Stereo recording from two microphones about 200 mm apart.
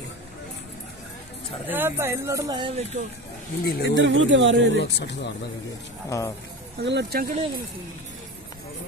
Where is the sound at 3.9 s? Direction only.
65° right (ahead or behind).